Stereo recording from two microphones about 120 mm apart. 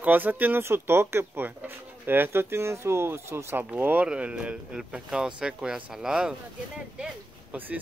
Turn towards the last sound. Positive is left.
turn(degrees=-15)  # may be behind; listen again after turning